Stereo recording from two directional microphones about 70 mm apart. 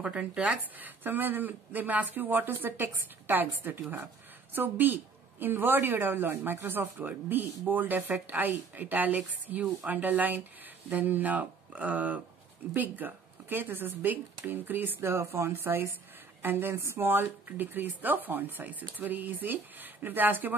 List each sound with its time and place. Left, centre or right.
0.0 s speech: centre